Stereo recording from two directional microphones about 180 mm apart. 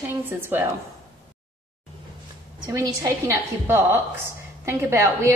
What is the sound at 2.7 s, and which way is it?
A woman's voice, 20° right (ahead or behind).